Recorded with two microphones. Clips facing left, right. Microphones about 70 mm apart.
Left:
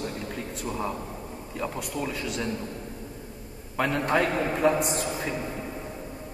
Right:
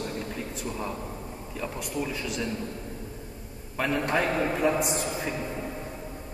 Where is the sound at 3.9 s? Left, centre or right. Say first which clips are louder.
Left 1 dB; centre.